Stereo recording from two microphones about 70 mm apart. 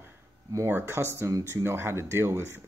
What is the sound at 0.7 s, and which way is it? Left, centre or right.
Speech, right.